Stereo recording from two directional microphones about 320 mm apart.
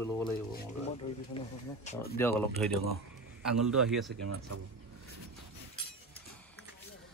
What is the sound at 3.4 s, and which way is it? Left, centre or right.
Speech, centre.